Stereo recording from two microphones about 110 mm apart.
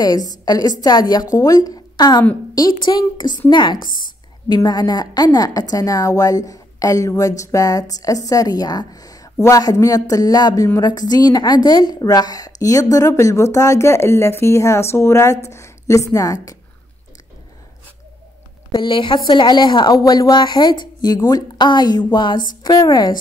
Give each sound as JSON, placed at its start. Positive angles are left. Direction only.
{"t": 0.0, "sound": "a woman's voice", "side_deg": 35}
{"t": 18.7, "sound": "a woman's voice", "side_deg": 45}